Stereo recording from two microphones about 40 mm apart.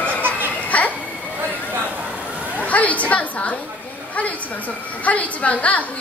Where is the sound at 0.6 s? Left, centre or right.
Left.